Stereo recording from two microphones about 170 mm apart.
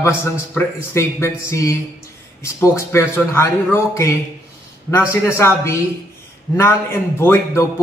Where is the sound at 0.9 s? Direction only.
15° left (ahead or behind).